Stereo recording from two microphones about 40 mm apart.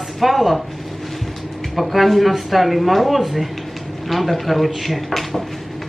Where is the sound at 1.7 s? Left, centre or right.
Centre.